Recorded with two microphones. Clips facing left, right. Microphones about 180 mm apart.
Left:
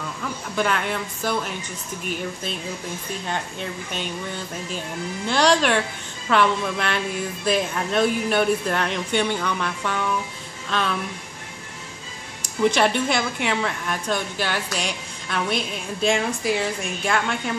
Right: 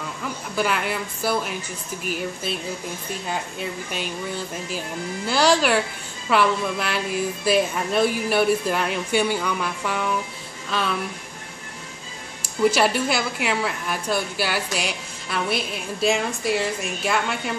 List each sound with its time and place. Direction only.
0.6 s a woman's voice: 5° right (ahead or behind)
12.6 s a woman's voice: 5° right (ahead or behind)